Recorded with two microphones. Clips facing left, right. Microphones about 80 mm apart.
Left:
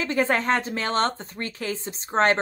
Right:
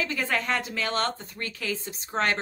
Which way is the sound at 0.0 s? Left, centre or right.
Left.